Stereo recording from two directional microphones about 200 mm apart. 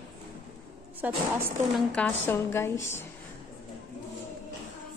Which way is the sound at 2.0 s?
10° left (ahead or behind).